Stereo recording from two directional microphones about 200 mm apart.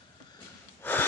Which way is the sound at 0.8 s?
10° left (ahead or behind).